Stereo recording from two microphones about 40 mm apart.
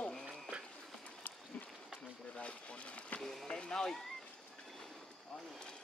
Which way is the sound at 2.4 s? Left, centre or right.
Left.